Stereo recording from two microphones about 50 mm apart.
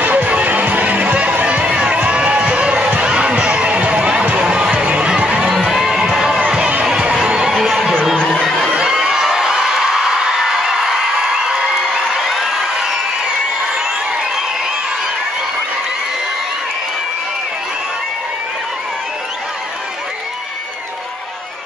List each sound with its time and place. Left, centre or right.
0.0 s music: right
1.7 s music: centre
4.5 s basketball bounce: centre
4.8 s a sound: right
5.7 s music: centre
6.6 s music: right
7.5 s a sound: centre
8.2 s a sound: centre
8.9 s crowd: centre
12.3 s crowd: centre